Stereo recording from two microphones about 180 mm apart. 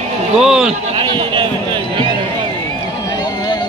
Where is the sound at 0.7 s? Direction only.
30° right (ahead or behind).